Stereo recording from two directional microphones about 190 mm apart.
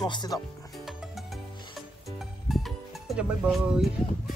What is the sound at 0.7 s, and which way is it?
Music, centre (ahead or behind).